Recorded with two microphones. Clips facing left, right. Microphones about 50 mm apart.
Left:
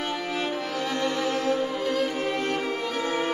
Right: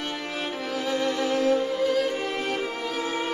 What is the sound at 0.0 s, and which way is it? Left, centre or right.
Music, centre.